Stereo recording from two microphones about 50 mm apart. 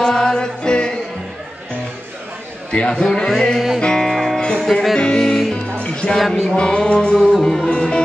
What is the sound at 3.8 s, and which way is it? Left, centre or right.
Music, centre.